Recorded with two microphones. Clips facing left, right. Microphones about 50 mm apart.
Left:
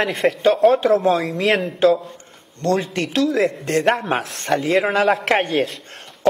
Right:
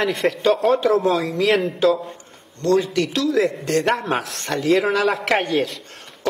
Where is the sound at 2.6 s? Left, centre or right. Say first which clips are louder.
Right 2 dB; left.